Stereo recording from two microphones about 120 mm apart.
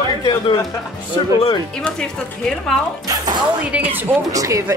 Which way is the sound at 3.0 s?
35° right (ahead or behind).